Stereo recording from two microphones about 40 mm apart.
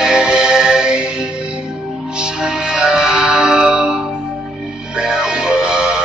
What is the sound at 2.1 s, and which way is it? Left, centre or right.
Music, centre.